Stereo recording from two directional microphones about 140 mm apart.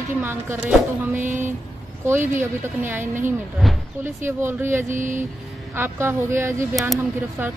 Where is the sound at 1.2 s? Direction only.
65° right (ahead or behind).